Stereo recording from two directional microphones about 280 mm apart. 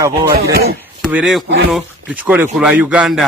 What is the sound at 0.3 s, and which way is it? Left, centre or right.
Speech, right.